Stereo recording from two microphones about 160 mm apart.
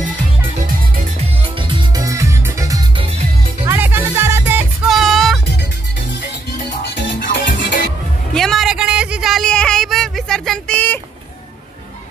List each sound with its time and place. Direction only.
0.6 s music: 60° right (ahead or behind)
1.5 s music: 30° right (ahead or behind); by 4.6 s 15° right (ahead or behind)
4.8 s music: centre (ahead or behind)
7.0 s music: 60° left (ahead or behind)
8.4 s a sound: centre (ahead or behind)